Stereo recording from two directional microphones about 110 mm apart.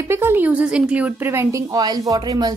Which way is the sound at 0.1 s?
20° right (ahead or behind).